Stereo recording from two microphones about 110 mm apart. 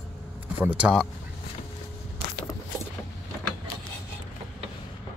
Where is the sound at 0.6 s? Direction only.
10° right (ahead or behind).